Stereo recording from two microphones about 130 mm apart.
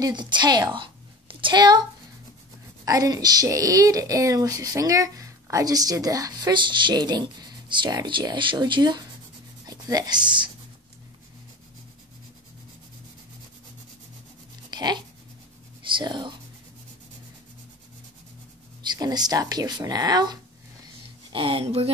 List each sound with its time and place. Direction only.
0.0 s a woman's voice: 35° right (ahead or behind)
14.7 s a sound: 35° right (ahead or behind)
15.9 s speech: 35° right (ahead or behind)
18.8 s speech: 30° right (ahead or behind)
21.3 s speech: 40° right (ahead or behind)